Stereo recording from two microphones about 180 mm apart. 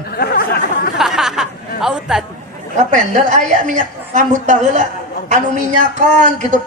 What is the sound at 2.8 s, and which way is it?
A woman's voice, 40° right (ahead or behind).